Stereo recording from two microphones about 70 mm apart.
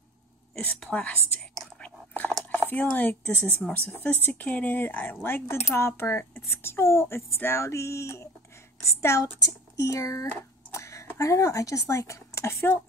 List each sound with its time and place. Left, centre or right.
0.7 s a woman's voice: centre
1.8 s chewing: left
2.5 s speech: left
9.4 s speech: left
10.7 s a sound: left
11.1 s speech: left